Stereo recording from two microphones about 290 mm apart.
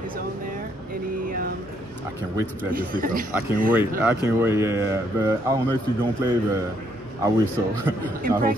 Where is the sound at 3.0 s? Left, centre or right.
Right.